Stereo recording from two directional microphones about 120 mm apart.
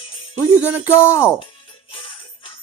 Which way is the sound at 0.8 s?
20° left (ahead or behind).